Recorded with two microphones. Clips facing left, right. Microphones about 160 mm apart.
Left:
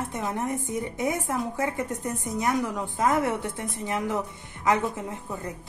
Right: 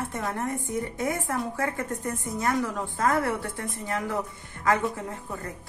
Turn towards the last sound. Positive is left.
turn(degrees=20)  # may be behind; listen again after turning